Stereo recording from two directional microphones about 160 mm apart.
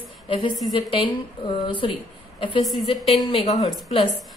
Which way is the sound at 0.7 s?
30° left (ahead or behind).